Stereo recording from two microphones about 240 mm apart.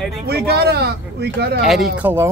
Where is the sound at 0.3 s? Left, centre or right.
Right.